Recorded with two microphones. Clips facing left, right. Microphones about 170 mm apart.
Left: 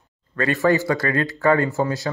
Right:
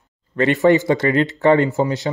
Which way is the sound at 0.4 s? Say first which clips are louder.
Right 5 dB; 20° right (ahead or behind).